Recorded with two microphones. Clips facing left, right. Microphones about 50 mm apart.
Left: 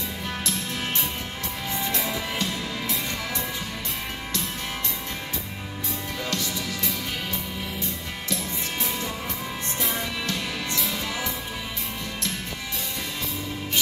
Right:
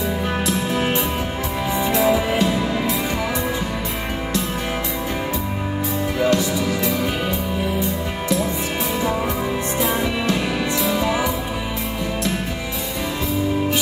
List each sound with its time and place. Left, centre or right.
0.5 s music: right
6.1 s music: centre
9.8 s music: centre